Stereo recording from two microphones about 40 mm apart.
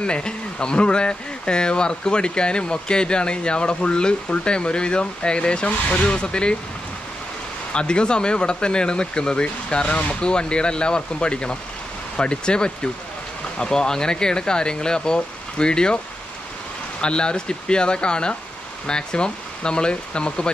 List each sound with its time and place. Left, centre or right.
0.0 s speech: left
7.7 s speech: left
17.0 s speech: left